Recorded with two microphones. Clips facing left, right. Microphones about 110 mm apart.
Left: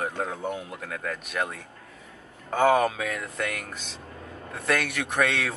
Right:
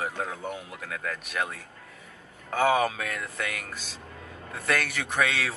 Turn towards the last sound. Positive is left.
turn(degrees=0)  # may be behind; listen again after turning